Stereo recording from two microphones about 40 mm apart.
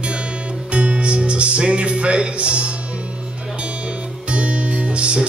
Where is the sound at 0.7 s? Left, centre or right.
Right.